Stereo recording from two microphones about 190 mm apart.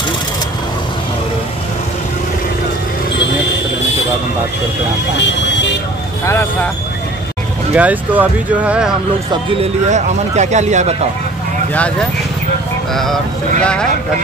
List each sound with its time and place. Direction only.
5.1 s vehicle: 70° left (ahead or behind)
6.2 s speech: 15° left (ahead or behind)
7.7 s speech: 10° right (ahead or behind)
9.3 s speech: 30° right (ahead or behind)
12.9 s speech: centre (ahead or behind)